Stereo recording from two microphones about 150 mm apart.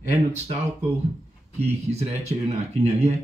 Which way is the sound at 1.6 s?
45° right (ahead or behind).